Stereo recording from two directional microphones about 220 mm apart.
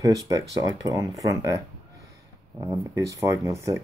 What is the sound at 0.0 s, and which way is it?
Speech, 15° right (ahead or behind).